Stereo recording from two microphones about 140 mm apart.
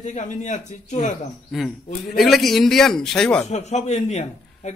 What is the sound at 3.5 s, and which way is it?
Speech, 55° left (ahead or behind).